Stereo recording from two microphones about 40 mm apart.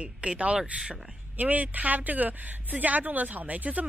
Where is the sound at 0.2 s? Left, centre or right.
Right.